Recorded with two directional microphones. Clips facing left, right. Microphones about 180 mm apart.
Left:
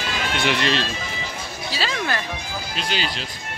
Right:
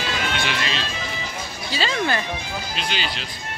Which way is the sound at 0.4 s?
60° left (ahead or behind).